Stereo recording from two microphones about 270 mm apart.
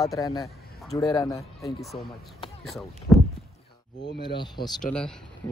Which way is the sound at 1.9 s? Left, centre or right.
Left.